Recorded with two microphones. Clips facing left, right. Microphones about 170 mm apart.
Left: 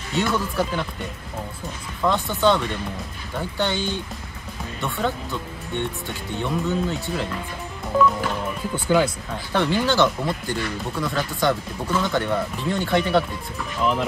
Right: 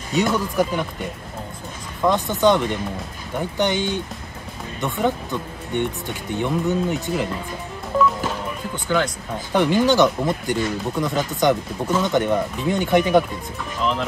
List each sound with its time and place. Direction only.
0.1 s speech: 15° right (ahead or behind)
2.0 s speech: 15° right (ahead or behind)
7.9 s music: centre (ahead or behind)
8.7 s speech: 10° left (ahead or behind)
9.5 s speech: 15° right (ahead or behind)